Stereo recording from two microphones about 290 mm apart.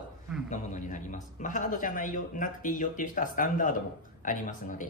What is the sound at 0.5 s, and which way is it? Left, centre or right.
A man's voice, left.